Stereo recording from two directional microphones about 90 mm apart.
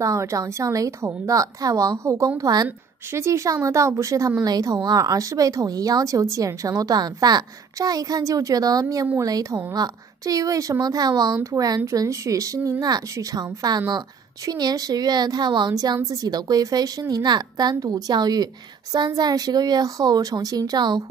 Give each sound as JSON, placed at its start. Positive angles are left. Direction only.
{"t": 0.0, "sound": "a woman's voice", "side_deg": -35}
{"t": 3.1, "sound": "a woman's voice", "side_deg": -30}
{"t": 15.7, "sound": "a woman's voice", "side_deg": -45}